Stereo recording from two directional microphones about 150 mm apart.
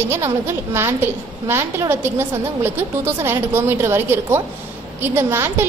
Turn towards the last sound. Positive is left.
turn(degrees=-15)  # may be behind; listen again after turning